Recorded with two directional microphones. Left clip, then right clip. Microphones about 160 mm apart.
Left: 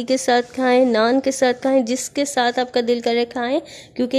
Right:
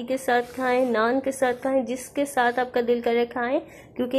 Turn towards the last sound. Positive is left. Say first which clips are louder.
# left 5 dB
turn(degrees=45)  # may be behind; listen again after turning